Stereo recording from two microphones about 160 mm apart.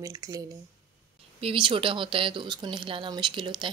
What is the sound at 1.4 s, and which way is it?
Speech, 35° right (ahead or behind).